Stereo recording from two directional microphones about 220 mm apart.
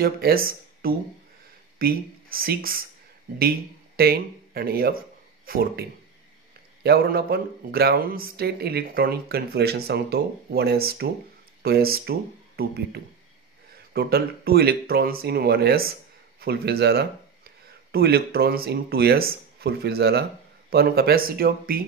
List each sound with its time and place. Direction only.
0.0 s speech: 45° right (ahead or behind)